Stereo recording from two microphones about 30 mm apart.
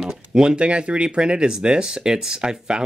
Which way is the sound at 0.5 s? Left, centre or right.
Right.